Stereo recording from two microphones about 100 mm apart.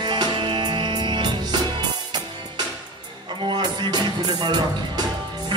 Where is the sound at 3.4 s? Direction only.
50° right (ahead or behind).